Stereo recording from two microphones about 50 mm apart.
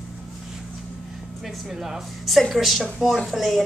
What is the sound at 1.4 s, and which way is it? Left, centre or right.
A woman's voice, centre.